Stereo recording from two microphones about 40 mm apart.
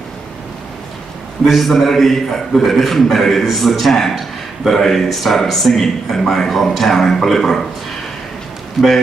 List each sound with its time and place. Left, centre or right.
1.4 s a man's voice: centre
8.8 s speech: centre